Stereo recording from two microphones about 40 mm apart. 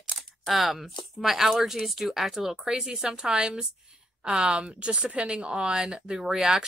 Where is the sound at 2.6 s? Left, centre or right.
Centre.